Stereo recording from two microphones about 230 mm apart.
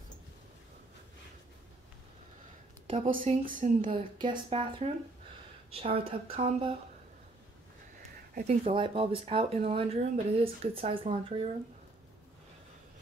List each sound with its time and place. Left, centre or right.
2.9 s speech: right
3.4 s speech: right
8.5 s speech: right